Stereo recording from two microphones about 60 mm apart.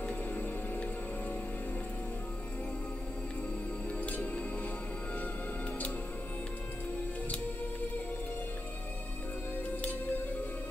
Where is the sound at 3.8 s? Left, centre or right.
Left.